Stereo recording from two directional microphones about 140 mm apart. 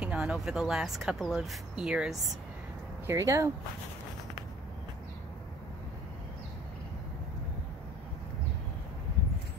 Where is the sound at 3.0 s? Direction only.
20° right (ahead or behind).